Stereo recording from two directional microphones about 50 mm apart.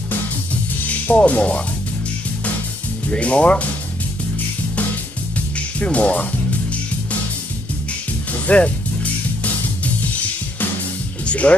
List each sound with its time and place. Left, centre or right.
0.8 s speech: left
3.1 s speech: left
5.8 s speech: left
8.3 s music: left
11.2 s speech: left